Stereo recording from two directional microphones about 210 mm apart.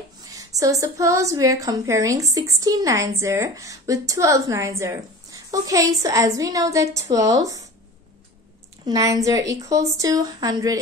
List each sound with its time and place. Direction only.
0.3 s a woman's voice: 15° right (ahead or behind)
8.8 s a woman's voice: 15° right (ahead or behind)